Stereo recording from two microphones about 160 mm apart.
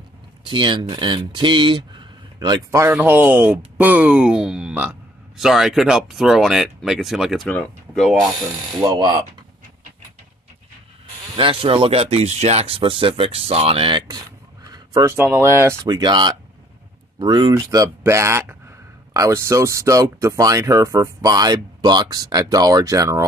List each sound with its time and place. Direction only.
0.5 s speech: 30° right (ahead or behind); by 8.5 s centre (ahead or behind)
8.8 s speech: 25° right (ahead or behind)
11.3 s speech: 35° right (ahead or behind)
14.7 s a sound: 25° right (ahead or behind)
15.1 s speech: 15° right (ahead or behind)